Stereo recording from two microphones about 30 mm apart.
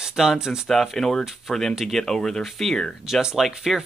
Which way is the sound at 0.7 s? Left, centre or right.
Centre.